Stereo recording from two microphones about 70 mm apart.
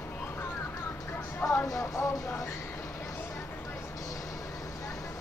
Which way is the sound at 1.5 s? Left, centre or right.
Left.